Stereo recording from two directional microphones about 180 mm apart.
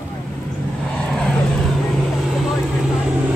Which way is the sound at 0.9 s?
5° left (ahead or behind).